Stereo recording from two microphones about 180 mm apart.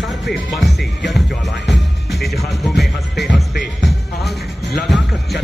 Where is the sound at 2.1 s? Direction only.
Centre (ahead or behind).